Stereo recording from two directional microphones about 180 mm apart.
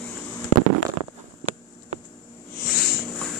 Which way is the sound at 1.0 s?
35° right (ahead or behind).